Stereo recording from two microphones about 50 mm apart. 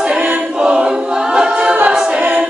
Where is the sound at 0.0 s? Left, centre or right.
Right.